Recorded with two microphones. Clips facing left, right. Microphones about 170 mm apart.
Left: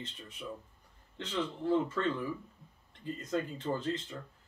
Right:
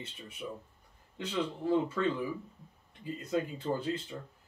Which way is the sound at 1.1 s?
10° right (ahead or behind).